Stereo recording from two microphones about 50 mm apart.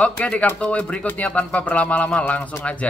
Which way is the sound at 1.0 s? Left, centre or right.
Left.